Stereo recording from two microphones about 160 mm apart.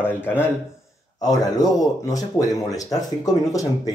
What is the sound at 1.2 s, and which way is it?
Speech, 25° left (ahead or behind).